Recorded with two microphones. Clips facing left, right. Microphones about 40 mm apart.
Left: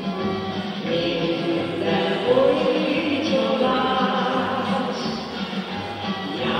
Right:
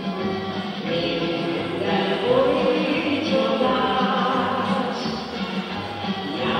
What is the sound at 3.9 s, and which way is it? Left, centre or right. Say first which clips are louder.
Music: even; centre.